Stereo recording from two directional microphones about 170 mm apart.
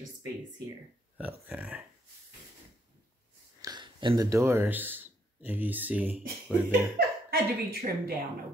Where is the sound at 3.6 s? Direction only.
25° right (ahead or behind); by 6.2 s 10° right (ahead or behind).